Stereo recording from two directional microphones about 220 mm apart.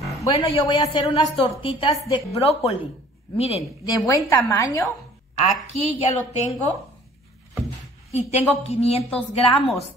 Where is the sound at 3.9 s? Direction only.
15° left (ahead or behind).